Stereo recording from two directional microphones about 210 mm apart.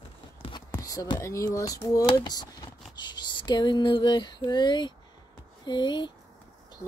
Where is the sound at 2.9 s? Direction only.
20° left (ahead or behind).